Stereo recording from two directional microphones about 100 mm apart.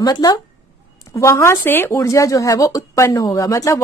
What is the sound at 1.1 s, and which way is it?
Speech, 30° left (ahead or behind).